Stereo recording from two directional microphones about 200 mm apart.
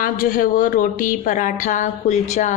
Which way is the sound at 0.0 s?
45° left (ahead or behind).